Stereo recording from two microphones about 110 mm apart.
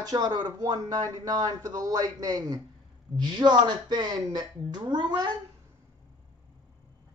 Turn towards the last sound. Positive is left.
turn(degrees=-40)  # may be behind; listen again after turning